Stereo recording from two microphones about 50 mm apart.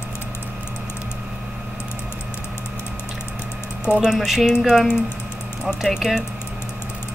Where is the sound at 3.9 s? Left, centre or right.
Right.